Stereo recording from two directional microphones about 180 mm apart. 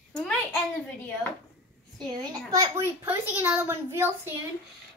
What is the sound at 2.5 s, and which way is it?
A woman's voice, 15° right (ahead or behind).